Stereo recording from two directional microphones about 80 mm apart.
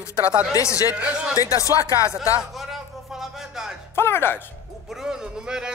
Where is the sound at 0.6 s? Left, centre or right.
Left.